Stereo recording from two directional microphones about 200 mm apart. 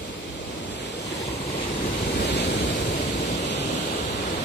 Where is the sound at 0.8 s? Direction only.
60° left (ahead or behind).